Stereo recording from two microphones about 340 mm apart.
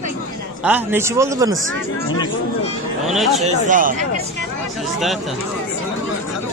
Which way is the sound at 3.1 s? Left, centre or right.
Centre.